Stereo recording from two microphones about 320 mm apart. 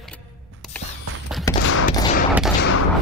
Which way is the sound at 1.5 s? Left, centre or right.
Centre.